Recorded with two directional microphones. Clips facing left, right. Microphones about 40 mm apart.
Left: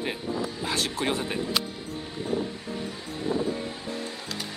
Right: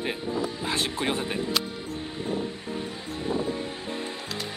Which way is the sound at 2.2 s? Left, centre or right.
Right.